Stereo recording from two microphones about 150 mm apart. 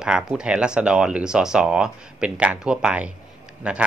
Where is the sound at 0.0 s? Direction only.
5° right (ahead or behind).